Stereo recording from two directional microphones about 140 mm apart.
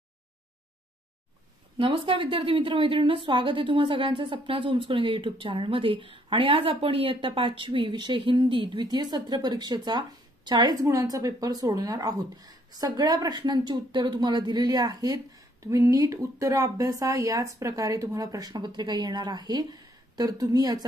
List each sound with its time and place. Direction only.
1.8 s a woman's voice: 40° right (ahead or behind)